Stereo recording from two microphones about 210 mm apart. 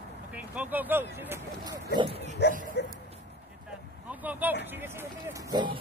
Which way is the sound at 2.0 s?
25° right (ahead or behind).